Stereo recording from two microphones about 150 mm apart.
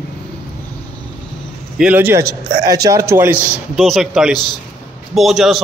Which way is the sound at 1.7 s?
10° right (ahead or behind).